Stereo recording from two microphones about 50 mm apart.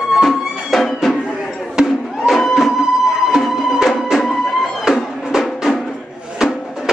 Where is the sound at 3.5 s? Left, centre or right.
Centre.